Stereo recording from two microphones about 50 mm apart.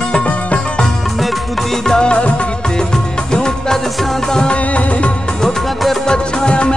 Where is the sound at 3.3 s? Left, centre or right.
Centre.